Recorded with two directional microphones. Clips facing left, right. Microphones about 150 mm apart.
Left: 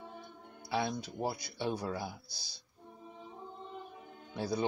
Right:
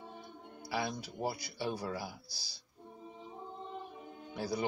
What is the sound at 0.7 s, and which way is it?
Speech, 10° right (ahead or behind).